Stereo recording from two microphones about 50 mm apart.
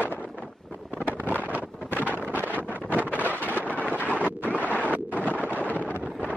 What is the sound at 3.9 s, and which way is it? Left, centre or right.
Wind noise, left.